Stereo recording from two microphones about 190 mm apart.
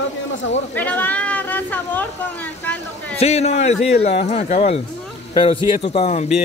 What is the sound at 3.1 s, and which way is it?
Speech, 35° left (ahead or behind).